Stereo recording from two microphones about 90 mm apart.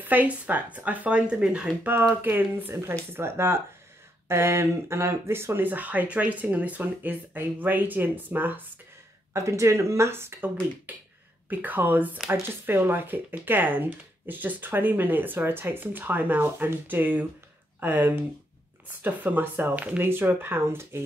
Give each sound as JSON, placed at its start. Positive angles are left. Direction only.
{"t": 0.0, "sound": "speech", "side_deg": -20}
{"t": 9.3, "sound": "speech", "side_deg": -35}